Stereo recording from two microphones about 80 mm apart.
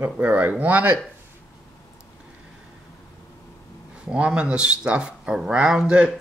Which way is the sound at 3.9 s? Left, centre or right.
Centre.